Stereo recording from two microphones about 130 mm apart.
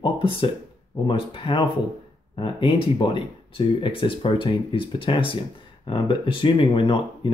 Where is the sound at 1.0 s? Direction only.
40° left (ahead or behind).